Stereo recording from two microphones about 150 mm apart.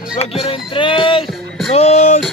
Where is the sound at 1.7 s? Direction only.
45° left (ahead or behind).